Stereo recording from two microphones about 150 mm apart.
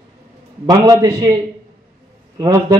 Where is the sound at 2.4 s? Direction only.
25° right (ahead or behind).